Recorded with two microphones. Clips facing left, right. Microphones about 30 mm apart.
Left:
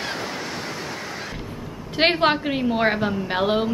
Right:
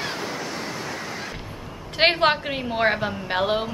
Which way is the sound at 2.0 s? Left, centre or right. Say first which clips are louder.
Even; centre.